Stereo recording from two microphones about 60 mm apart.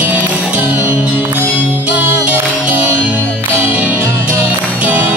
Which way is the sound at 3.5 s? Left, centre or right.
Right.